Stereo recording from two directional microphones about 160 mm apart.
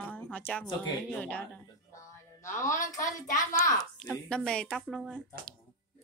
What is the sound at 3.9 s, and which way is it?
Speech, 5° left (ahead or behind).